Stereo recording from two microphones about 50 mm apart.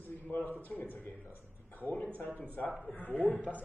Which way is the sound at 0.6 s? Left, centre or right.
Left.